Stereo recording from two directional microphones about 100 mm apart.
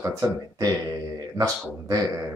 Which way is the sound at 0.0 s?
30° right (ahead or behind).